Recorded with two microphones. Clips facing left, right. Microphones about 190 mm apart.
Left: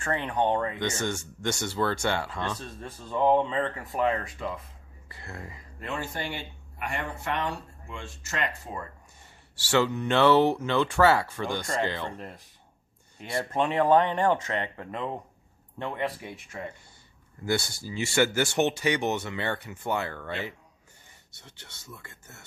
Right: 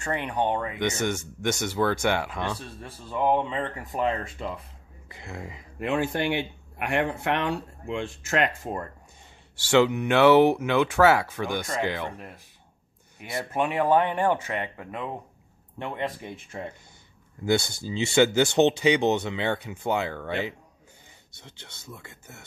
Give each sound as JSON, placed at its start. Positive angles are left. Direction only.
{"t": 0.0, "sound": "speech", "side_deg": -15}
{"t": 5.8, "sound": "speech", "side_deg": -65}
{"t": 9.7, "sound": "speech", "side_deg": -15}
{"t": 15.8, "sound": "speech", "side_deg": -20}
{"t": 17.5, "sound": "speech", "side_deg": -20}